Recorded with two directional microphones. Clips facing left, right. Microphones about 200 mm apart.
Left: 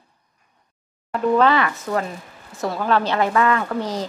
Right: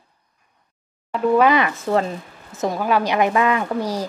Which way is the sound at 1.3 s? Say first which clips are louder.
Right 1 dB; 15° right (ahead or behind).